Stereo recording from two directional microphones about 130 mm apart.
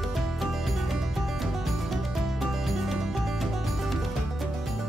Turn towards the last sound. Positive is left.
turn(degrees=0)  # may be behind; listen again after turning